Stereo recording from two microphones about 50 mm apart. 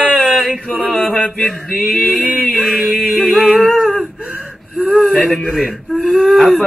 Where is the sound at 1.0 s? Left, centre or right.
Left.